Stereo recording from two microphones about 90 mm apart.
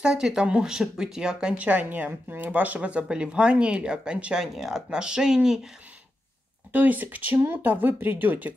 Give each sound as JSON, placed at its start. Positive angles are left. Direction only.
{"t": 0.0, "sound": "speech", "side_deg": -10}
{"t": 6.7, "sound": "speech", "side_deg": -20}